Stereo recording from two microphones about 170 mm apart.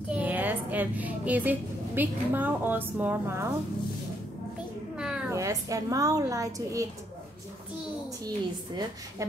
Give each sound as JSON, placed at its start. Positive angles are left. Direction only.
{"t": 0.1, "sound": "a woman's voice", "side_deg": -10}
{"t": 4.9, "sound": "a sound", "side_deg": -5}
{"t": 5.3, "sound": "a woman's voice", "side_deg": -20}